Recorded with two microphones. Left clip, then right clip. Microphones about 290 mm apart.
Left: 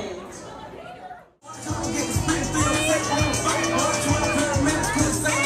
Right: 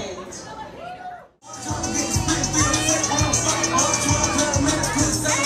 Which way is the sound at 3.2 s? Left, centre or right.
Centre.